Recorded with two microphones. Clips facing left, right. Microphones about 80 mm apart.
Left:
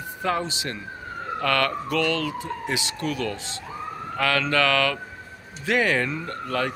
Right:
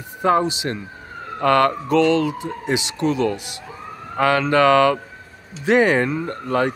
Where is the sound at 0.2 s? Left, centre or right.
Right.